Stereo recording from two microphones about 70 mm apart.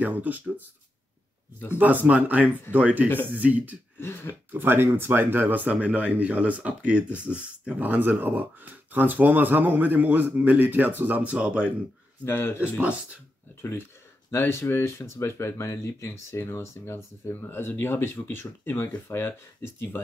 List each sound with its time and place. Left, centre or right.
0.0 s speech: right
1.8 s speech: right
4.0 s speech: left
4.5 s speech: right; by 11.7 s centre
12.3 s speech: left
13.6 s speech: left